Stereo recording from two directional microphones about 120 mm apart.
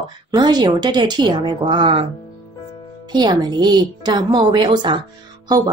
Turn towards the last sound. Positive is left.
turn(degrees=-35)  # may be behind; listen again after turning